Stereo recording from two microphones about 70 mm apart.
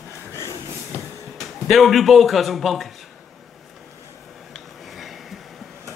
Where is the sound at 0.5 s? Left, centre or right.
Right.